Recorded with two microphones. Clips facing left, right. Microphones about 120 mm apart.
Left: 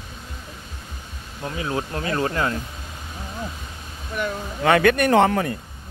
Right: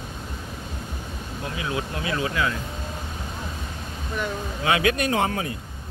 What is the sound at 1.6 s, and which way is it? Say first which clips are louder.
Speech: left 3 dB; 35° left (ahead or behind).